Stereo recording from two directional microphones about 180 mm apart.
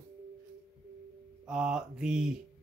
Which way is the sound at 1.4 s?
5° right (ahead or behind).